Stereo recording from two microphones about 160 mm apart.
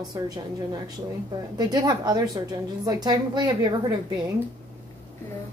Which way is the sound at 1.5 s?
25° right (ahead or behind).